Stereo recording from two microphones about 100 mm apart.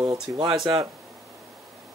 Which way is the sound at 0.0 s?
35° right (ahead or behind).